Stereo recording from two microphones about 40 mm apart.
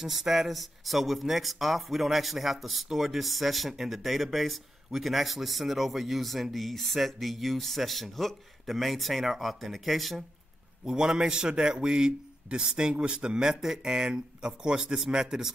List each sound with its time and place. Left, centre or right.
0.0 s speech: centre
10.9 s a man's voice: centre
13.6 s speech: centre
13.9 s a man's voice: right